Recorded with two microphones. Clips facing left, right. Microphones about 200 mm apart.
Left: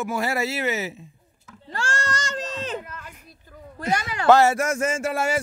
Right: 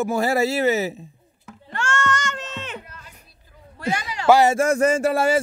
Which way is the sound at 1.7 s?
35° left (ahead or behind).